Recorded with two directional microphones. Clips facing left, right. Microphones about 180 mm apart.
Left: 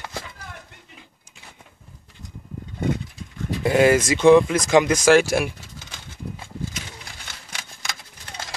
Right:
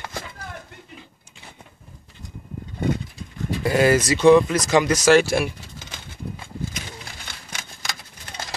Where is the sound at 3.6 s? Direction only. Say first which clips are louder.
Left 1 dB; 15° left (ahead or behind).